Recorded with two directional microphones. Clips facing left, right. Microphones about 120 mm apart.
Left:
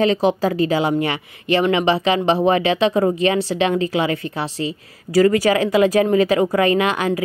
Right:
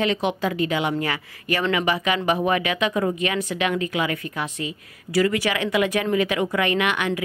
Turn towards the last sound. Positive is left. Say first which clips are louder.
# left 4 dB
turn(degrees=35)  # may be behind; listen again after turning